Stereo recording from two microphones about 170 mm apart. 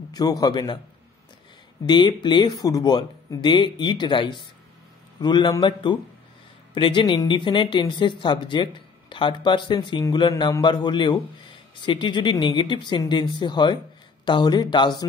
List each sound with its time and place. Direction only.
0.1 s speech: 25° left (ahead or behind)
1.9 s speech: 25° left (ahead or behind)